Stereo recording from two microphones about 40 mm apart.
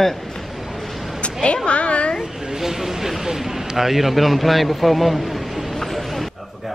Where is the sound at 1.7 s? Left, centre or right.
Left.